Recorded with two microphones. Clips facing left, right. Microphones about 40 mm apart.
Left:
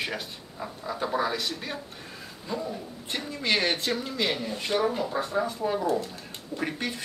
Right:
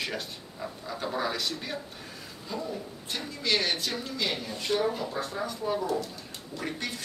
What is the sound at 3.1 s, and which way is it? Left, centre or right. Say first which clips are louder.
Speech: left 2 dB; left.